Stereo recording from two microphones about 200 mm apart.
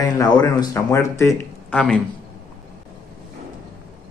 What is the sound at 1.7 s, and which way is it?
Speech, 5° left (ahead or behind).